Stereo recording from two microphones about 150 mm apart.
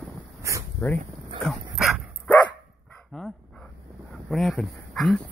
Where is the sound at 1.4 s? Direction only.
Centre (ahead or behind).